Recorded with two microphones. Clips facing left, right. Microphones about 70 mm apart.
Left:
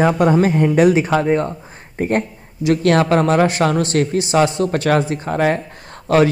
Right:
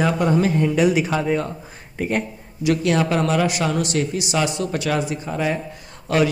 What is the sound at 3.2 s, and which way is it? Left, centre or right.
Speech, left.